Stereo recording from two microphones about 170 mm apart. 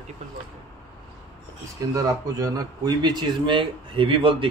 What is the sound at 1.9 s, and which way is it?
Speech, 20° right (ahead or behind).